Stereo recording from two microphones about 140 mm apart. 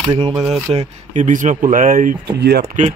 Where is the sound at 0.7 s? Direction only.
60° right (ahead or behind).